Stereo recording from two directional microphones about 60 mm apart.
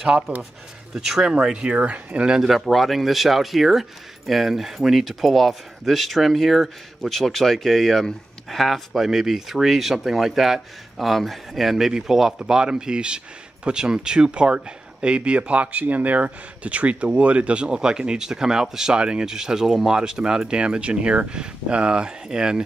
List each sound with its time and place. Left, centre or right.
0.9 s speech: centre
2.3 s speech: centre